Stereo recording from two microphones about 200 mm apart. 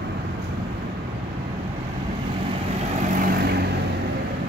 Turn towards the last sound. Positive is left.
turn(degrees=-50)  # may be behind; listen again after turning